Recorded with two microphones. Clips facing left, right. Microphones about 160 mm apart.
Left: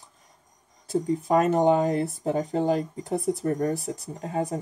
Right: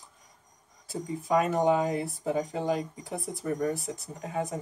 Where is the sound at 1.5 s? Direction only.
40° left (ahead or behind).